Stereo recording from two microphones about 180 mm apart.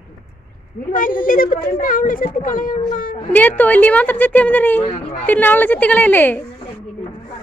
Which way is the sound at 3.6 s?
10° left (ahead or behind).